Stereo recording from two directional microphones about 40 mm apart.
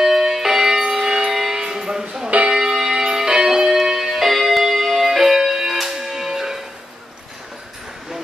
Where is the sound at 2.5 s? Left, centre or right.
Centre.